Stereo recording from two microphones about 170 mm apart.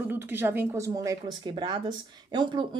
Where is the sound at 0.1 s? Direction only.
10° right (ahead or behind).